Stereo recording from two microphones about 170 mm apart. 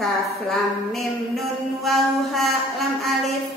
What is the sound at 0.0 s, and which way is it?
A woman's voice, centre (ahead or behind).